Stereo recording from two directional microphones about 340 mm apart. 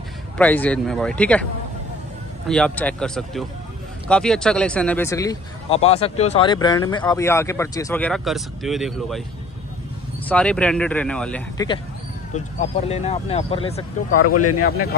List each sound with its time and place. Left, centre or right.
0.4 s speech: centre
2.4 s speech: centre
10.2 s speech: centre
14.1 s speech: left